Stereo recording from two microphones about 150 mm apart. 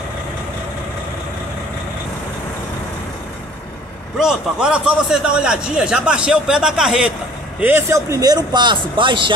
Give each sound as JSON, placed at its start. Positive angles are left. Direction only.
{"t": 4.2, "sound": "a man's voice", "side_deg": -5}
{"t": 7.6, "sound": "a man's voice", "side_deg": -15}